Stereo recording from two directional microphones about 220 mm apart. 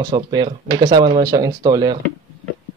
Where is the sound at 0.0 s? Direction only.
20° right (ahead or behind).